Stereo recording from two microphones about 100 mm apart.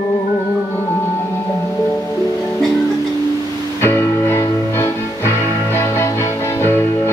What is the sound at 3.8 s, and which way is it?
Music, 25° left (ahead or behind).